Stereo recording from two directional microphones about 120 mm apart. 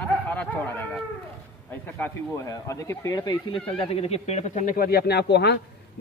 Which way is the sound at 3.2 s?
40° left (ahead or behind).